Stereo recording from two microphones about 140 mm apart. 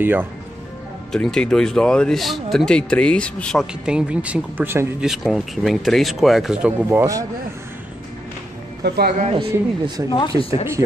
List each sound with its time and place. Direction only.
0.0 s speech: 15° right (ahead or behind)
1.1 s speech: 5° left (ahead or behind)
3.8 s speech: 10° right (ahead or behind)
5.0 s speech: 5° right (ahead or behind); by 7.2 s 20° right (ahead or behind)
9.2 s a man's voice: 40° right (ahead or behind)
10.0 s speech: 35° left (ahead or behind)